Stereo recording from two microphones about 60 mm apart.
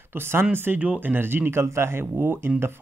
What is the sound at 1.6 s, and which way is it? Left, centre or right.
Speech, right.